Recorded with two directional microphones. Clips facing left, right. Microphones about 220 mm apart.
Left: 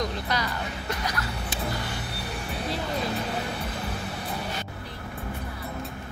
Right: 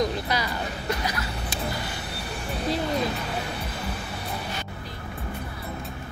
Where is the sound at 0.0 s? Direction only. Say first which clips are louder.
Right 3 dB; 10° right (ahead or behind).